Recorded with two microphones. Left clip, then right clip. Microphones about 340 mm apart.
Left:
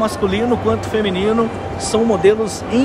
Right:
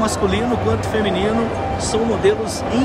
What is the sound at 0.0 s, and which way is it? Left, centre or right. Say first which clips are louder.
Speech: left 1 dB; centre.